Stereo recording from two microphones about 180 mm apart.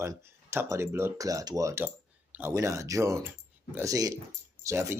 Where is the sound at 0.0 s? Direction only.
15° right (ahead or behind).